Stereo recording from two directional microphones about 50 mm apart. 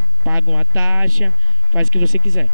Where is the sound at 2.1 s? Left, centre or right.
Right.